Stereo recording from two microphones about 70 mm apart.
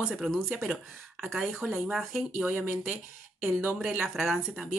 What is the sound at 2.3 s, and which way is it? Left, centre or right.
Speech, right.